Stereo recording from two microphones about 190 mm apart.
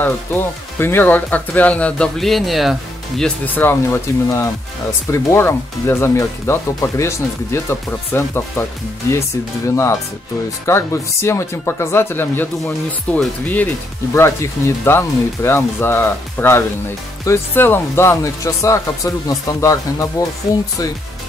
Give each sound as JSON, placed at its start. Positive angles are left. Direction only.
{"t": 0.0, "sound": "speech", "side_deg": 10}
{"t": 10.6, "sound": "speech", "side_deg": 15}